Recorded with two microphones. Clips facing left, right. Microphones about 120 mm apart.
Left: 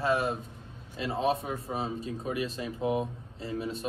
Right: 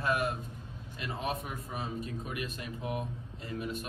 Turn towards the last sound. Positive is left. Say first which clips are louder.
# left 3 dB
turn(degrees=30)  # may be behind; listen again after turning